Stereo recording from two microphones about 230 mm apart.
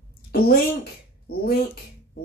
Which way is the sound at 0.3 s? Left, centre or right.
Left.